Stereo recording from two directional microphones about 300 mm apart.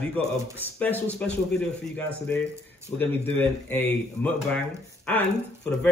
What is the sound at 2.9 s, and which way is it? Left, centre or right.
A man's voice, centre.